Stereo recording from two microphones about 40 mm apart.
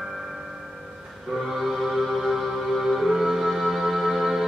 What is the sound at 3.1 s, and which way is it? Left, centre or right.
Music, centre.